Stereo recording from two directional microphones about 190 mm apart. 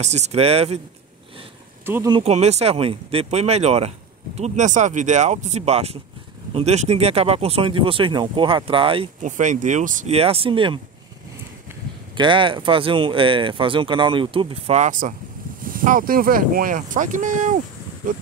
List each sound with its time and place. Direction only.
0.0 s speech: 35° right (ahead or behind)
1.9 s speech: 15° right (ahead or behind)
2.1 s speech: 35° right (ahead or behind)
9.2 s speech: 40° right (ahead or behind)
12.2 s speech: 25° right (ahead or behind); by 18.2 s 45° right (ahead or behind)